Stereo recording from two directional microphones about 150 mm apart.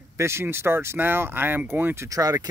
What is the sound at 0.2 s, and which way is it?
Speech, 15° right (ahead or behind).